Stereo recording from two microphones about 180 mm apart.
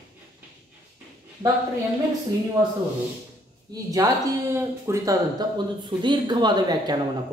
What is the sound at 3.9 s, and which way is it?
Speech, 15° right (ahead or behind).